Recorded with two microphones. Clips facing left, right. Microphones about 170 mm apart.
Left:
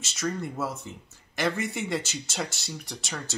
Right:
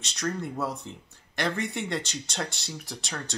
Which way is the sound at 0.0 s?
5° left (ahead or behind).